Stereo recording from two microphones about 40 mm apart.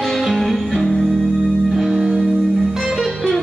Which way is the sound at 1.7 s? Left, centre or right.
Centre.